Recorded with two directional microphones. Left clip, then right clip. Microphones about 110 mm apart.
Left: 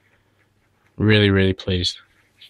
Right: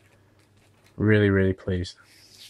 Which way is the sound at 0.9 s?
10° left (ahead or behind).